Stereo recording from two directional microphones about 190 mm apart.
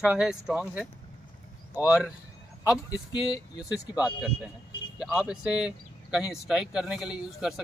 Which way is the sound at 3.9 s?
5° right (ahead or behind).